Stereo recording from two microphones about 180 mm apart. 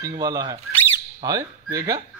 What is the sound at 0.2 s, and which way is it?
Speech, 20° right (ahead or behind).